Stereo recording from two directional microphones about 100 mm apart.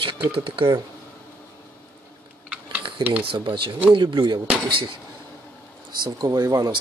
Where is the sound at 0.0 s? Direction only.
65° right (ahead or behind).